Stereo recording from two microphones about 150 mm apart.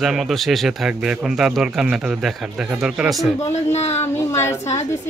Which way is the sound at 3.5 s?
45° left (ahead or behind).